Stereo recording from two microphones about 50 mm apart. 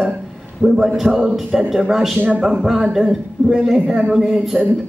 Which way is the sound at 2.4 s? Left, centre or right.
Centre.